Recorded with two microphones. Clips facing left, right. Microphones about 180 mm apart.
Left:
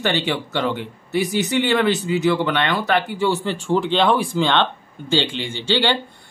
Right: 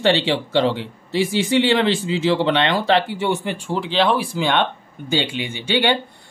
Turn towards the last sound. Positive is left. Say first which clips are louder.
# right 1 dB
turn(degrees=-15)  # may be behind; listen again after turning